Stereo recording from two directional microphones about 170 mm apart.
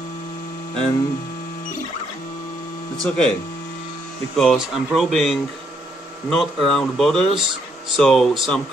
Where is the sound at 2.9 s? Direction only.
5° left (ahead or behind).